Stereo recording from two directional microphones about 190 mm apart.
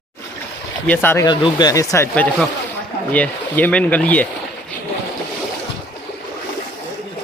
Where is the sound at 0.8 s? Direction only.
10° left (ahead or behind).